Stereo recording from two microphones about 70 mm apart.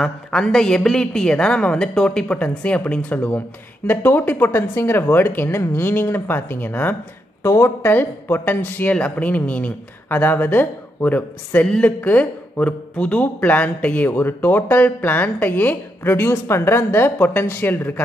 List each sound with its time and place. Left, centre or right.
0.0 s speech: centre; by 7.0 s left
7.4 s speech: left